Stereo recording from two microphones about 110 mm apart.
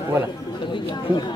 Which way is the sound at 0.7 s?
45° left (ahead or behind).